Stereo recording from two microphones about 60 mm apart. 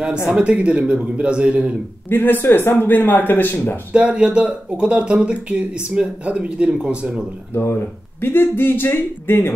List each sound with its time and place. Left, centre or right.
0.0 s speech: centre
2.0 s speech: left
3.9 s speech: centre
7.5 s speech: left